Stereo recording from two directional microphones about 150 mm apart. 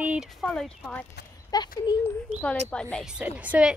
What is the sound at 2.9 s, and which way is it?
Speech, 5° right (ahead or behind).